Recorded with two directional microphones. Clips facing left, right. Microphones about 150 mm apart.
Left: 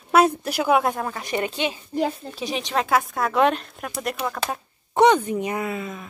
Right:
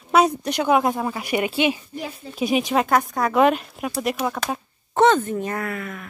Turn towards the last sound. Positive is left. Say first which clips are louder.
# left 1 dB
turn(degrees=20)  # may be behind; listen again after turning